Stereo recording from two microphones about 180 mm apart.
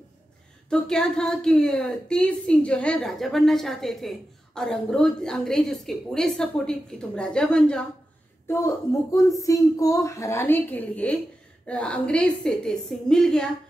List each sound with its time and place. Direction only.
0.7 s speech: 5° left (ahead or behind)
8.5 s speech: 15° left (ahead or behind)